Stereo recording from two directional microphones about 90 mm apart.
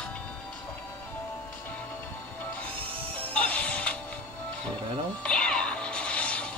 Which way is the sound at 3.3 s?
15° left (ahead or behind).